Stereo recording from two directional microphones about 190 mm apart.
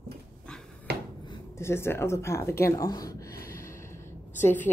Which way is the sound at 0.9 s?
60° right (ahead or behind).